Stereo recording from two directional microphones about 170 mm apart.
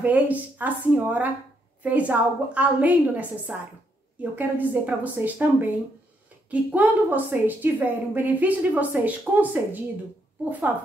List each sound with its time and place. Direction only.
0.0 s a woman's voice: 10° right (ahead or behind)